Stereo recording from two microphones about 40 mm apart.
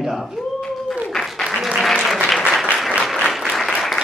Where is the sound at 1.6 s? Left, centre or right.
Centre.